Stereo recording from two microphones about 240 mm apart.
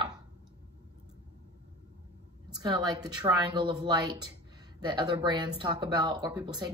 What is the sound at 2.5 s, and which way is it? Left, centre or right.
A woman's voice, centre.